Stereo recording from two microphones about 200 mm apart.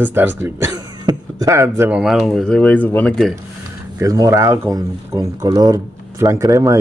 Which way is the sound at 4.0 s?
15° right (ahead or behind).